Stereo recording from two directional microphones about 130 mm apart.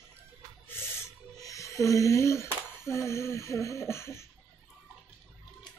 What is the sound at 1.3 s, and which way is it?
Music, 25° left (ahead or behind).